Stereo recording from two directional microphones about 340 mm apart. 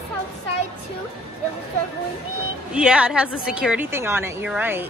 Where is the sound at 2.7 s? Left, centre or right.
Centre.